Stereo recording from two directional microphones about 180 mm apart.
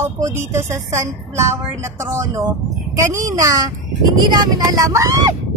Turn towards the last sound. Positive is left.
turn(degrees=-15)  # may be behind; listen again after turning